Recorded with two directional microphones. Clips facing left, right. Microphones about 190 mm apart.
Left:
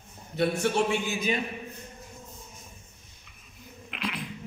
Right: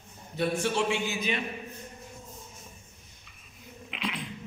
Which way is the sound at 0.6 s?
45° left (ahead or behind).